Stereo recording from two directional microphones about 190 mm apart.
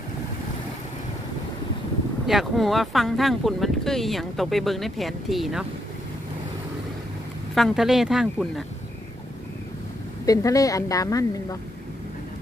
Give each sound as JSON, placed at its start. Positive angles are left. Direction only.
{"t": 2.2, "sound": "speech", "side_deg": 0}
{"t": 7.5, "sound": "speech", "side_deg": 0}
{"t": 10.2, "sound": "a woman's voice", "side_deg": 20}